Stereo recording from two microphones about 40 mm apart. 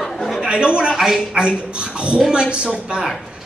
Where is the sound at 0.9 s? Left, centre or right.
Centre.